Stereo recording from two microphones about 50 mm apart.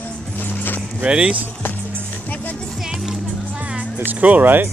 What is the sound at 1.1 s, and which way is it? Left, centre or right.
Speech, centre.